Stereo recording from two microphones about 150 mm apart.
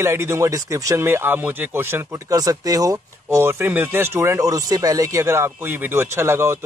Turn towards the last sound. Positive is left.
turn(degrees=-20)  # may be behind; listen again after turning